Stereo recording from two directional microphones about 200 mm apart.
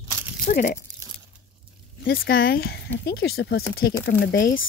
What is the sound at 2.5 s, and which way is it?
Speech, 50° left (ahead or behind).